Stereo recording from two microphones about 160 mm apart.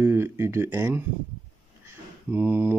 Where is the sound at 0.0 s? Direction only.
15° right (ahead or behind).